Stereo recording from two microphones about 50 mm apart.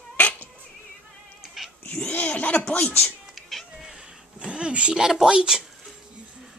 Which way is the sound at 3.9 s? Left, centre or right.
Centre.